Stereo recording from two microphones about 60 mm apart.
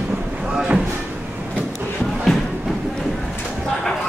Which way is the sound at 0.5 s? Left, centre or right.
Centre.